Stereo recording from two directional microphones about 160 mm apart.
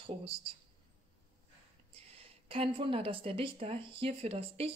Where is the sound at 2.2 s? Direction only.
35° right (ahead or behind).